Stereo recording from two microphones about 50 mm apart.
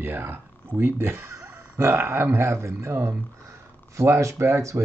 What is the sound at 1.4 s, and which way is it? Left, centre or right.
Speech, right.